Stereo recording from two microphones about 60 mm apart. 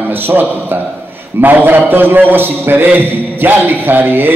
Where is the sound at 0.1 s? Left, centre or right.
Right.